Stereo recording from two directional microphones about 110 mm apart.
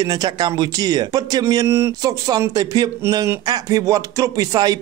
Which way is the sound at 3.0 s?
25° right (ahead or behind).